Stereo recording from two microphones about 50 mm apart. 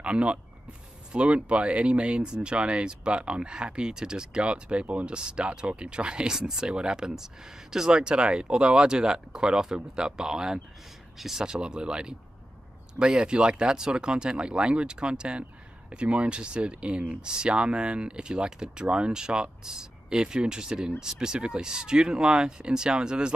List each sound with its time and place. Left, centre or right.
0.0 s speech: right